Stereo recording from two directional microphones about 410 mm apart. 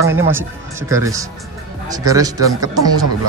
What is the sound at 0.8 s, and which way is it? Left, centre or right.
Speech, centre.